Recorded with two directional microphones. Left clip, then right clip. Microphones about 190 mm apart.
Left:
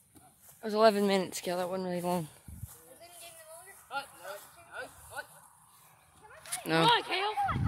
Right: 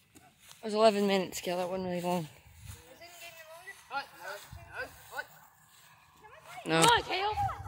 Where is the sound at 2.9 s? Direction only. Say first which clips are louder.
Right 3 dB; 5° left (ahead or behind); by 5.3 s 25° left (ahead or behind).